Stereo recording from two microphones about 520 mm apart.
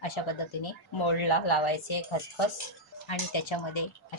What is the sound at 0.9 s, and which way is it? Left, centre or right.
Speech, left.